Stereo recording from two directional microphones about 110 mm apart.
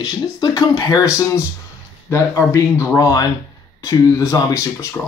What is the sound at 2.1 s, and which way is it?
Speech, 30° left (ahead or behind).